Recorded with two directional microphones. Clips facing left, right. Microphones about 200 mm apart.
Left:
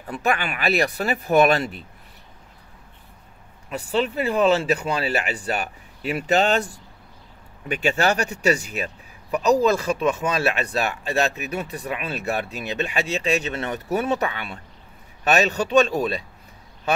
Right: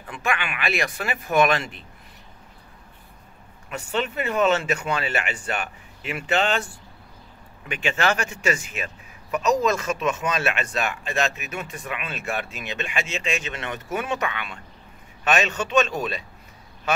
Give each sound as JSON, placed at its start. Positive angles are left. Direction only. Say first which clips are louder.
{"t": 0.1, "sound": "speech", "louder": "left 4 dB", "side_deg": 40}
{"t": 3.7, "sound": "speech", "louder": "left 4 dB", "side_deg": 35}